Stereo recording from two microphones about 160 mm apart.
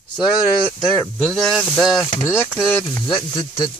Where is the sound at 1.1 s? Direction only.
5° left (ahead or behind).